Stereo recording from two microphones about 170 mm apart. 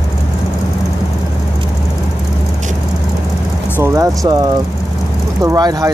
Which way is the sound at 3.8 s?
15° right (ahead or behind).